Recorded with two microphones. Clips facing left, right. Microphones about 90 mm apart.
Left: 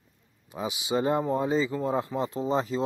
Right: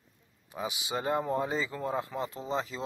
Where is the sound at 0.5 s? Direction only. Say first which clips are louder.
Left 5 dB; 20° left (ahead or behind).